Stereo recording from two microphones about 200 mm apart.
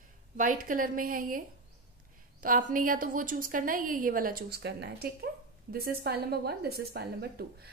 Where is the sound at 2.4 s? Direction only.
45° right (ahead or behind).